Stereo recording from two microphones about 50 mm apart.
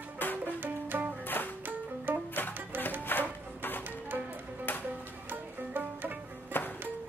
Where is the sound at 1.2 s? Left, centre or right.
Left.